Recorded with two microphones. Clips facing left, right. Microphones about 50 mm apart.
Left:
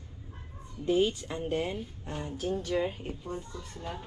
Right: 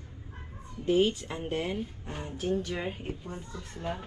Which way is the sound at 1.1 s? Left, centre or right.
Centre.